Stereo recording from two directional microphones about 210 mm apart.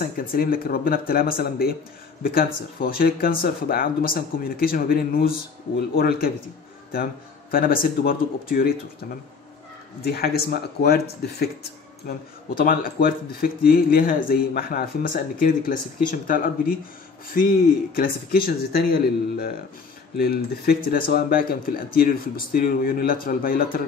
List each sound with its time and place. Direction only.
0.0 s speech: 45° left (ahead or behind)
7.5 s speech: 45° left (ahead or behind)
10.0 s speech: 45° left (ahead or behind)
20.2 s speech: 45° left (ahead or behind)